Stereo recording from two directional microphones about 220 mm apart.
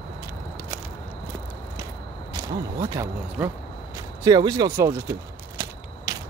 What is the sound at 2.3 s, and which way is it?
Speech, 15° right (ahead or behind).